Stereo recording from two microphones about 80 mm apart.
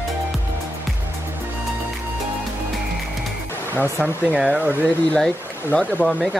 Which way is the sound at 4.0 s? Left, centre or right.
Centre.